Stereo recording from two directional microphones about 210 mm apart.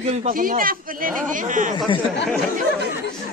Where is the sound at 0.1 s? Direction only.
35° right (ahead or behind).